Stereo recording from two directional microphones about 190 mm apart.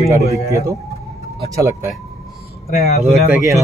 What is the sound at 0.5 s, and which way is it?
Speech, 15° right (ahead or behind).